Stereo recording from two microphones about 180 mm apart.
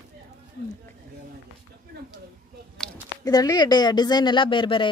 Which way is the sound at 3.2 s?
20° left (ahead or behind).